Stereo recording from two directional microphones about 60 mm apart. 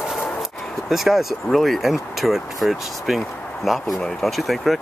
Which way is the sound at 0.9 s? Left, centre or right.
Centre.